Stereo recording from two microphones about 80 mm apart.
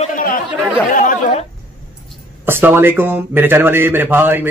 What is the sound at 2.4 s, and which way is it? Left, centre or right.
A man's voice, right.